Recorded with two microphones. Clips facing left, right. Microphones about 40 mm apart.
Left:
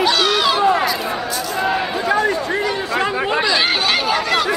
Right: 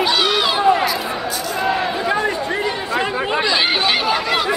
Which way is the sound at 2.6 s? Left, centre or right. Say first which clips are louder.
Left 1 dB; centre.